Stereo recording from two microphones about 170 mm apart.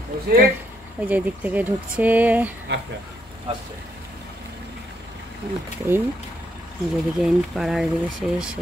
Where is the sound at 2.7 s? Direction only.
75° right (ahead or behind).